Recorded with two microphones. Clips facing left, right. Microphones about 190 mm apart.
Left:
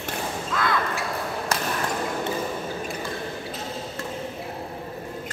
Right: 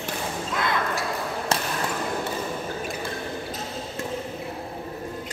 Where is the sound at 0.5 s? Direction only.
20° right (ahead or behind).